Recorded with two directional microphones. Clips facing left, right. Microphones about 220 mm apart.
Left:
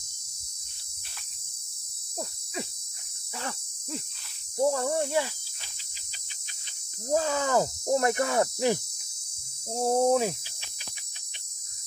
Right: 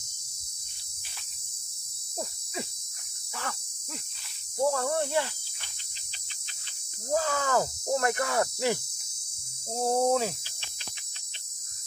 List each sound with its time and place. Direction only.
3.3 s cricket: 25° left (ahead or behind)
4.6 s speech: 15° left (ahead or behind)
7.1 s speech: 20° left (ahead or behind)
9.8 s speech: 15° left (ahead or behind)